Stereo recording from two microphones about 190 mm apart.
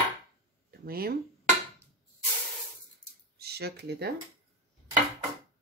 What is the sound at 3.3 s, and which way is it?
Speech, 55° right (ahead or behind).